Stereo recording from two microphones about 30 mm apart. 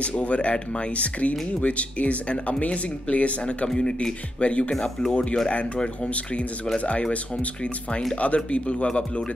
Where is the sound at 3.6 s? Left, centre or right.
Left.